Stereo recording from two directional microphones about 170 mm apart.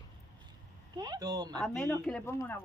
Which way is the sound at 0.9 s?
20° right (ahead or behind).